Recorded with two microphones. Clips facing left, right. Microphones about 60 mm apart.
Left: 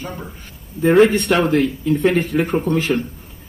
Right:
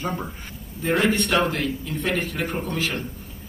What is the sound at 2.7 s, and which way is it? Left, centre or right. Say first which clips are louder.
Speech: left 9 dB; left.